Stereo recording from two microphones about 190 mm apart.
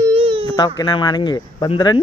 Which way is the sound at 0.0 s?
30° right (ahead or behind).